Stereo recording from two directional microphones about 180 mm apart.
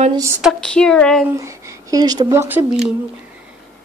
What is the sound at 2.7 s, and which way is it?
Speech, 5° right (ahead or behind).